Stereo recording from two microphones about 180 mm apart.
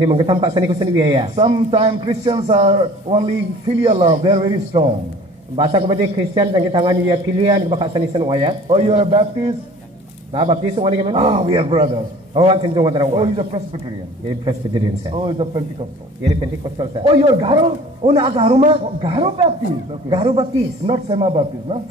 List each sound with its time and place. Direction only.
0.0 s a man's voice: 25° right (ahead or behind)
10.3 s a man's voice: 30° right (ahead or behind)